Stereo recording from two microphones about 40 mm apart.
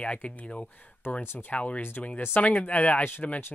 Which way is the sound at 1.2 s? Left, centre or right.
Left.